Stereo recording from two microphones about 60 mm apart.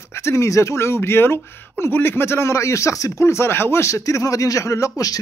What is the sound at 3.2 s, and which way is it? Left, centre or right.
Speech, left.